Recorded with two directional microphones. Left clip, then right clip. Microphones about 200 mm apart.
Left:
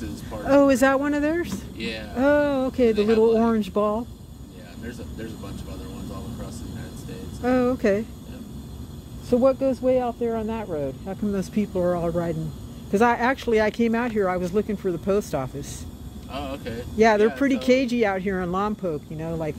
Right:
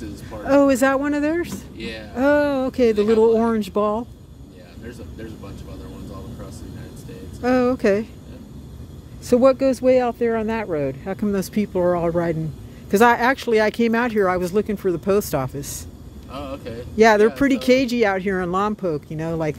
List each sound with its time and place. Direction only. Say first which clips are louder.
0.0 s speech: right 1 dB; 10° right (ahead or behind)
2.1 s speech: right 2 dB; 15° right (ahead or behind)
3.3 s speech: right 3 dB; centre (ahead or behind)
3.5 s speech: right 2 dB; 15° right (ahead or behind)
7.4 s speech: right 3 dB; 20° right (ahead or behind)
9.3 s speech: right 4 dB; 35° right (ahead or behind)
16.3 s speech: right 1 dB; 5° left (ahead or behind)
16.9 s speech: right 4 dB; 25° right (ahead or behind)